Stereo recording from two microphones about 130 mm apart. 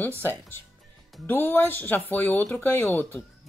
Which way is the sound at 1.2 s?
15° left (ahead or behind).